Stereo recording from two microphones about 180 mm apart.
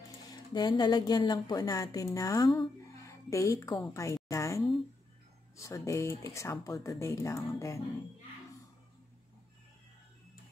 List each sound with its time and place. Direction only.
0.5 s a woman's voice: 25° left (ahead or behind)